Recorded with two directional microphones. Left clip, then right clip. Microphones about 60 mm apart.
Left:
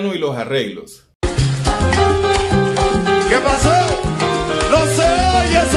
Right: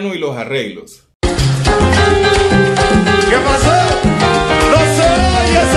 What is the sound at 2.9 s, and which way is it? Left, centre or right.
Salsa music, centre.